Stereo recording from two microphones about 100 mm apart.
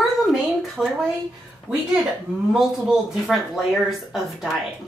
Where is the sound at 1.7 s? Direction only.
15° right (ahead or behind).